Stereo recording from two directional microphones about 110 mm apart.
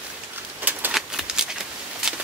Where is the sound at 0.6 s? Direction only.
15° right (ahead or behind).